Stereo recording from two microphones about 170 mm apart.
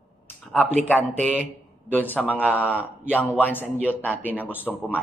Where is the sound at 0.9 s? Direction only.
10° left (ahead or behind).